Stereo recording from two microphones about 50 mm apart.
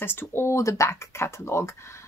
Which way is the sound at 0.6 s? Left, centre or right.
Left.